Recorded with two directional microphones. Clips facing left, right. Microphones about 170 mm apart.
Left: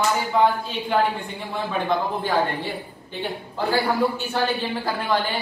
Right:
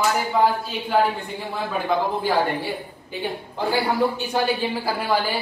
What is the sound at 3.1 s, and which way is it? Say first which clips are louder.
A man's voice: right 1 dB; 15° right (ahead or behind).